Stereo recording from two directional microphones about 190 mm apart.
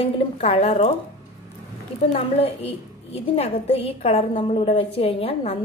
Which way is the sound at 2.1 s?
30° left (ahead or behind).